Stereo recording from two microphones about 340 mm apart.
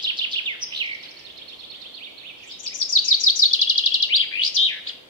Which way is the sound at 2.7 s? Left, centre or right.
Left.